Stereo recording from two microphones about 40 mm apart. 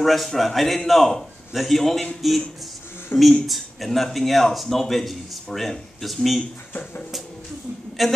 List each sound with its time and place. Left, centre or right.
0.0 s a man's voice: centre
3.1 s speech: left
3.4 s a man's voice: centre
8.0 s a man's voice: centre